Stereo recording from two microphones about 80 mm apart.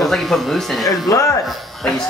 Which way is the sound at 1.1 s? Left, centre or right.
Left.